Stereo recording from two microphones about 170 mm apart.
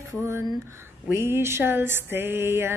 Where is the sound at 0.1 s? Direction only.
15° right (ahead or behind).